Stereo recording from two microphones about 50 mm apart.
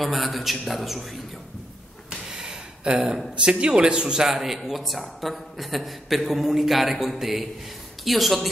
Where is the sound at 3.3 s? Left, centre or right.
Right.